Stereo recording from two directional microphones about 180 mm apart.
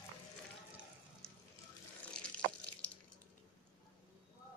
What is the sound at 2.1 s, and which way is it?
Water, 5° left (ahead or behind).